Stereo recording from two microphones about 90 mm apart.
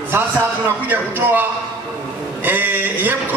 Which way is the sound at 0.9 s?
20° right (ahead or behind).